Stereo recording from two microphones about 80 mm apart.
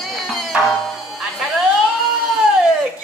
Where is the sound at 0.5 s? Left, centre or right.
Centre.